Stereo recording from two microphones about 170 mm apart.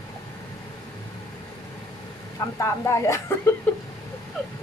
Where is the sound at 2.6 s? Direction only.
15° left (ahead or behind).